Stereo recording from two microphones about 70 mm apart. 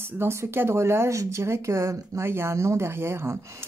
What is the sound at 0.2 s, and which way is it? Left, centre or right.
Speech, right.